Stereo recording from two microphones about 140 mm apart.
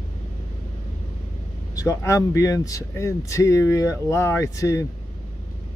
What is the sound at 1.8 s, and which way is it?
Speech, 20° left (ahead or behind).